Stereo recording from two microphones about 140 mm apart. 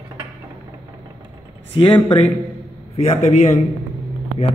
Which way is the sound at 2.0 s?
45° left (ahead or behind).